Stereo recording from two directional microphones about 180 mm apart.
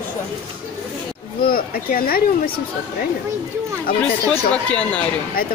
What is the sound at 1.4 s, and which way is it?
Speech, 55° left (ahead or behind).